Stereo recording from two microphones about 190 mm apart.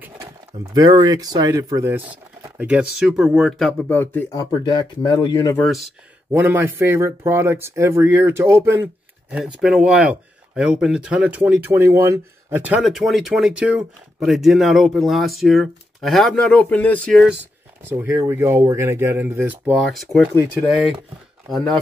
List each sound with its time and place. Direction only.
0.7 s speech: 20° right (ahead or behind); by 5.6 s 20° left (ahead or behind)
5.6 s speech: centre (ahead or behind)
6.3 s speech: 10° right (ahead or behind)
17.8 s speech: 10° right (ahead or behind)
21.5 s speech: centre (ahead or behind)